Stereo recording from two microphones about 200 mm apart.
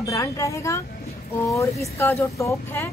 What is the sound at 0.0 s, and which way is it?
Speech, 15° left (ahead or behind).